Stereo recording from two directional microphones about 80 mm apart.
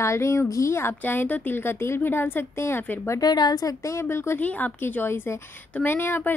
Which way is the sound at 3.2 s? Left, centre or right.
Left.